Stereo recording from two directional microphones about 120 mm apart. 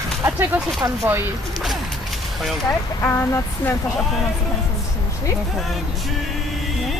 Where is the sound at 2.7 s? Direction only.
20° left (ahead or behind).